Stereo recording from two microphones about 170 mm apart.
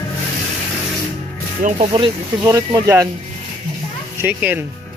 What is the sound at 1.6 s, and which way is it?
Speech, 45° right (ahead or behind).